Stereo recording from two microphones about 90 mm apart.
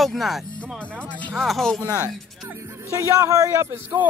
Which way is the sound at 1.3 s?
Centre (ahead or behind).